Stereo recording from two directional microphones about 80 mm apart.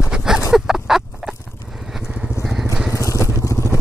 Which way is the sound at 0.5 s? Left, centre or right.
Centre.